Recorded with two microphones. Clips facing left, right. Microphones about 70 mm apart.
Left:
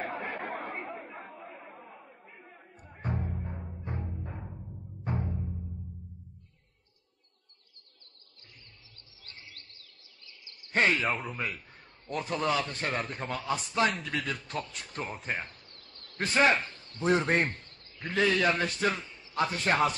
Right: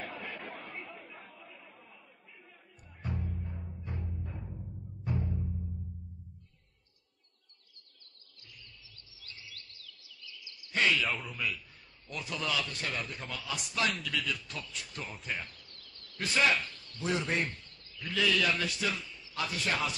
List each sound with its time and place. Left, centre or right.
0.0 s chatter: left
3.0 s timpani: left
9.2 s a sound: left
11.3 s a man's voice: left